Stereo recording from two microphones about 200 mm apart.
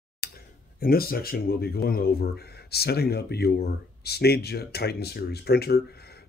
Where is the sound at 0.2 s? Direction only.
50° left (ahead or behind).